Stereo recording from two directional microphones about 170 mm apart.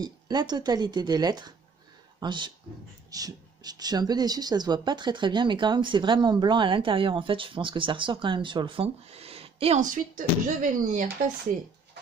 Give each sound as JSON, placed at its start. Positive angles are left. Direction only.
{"t": 0.0, "sound": "speech", "side_deg": -25}
{"t": 9.8, "sound": "speech", "side_deg": -50}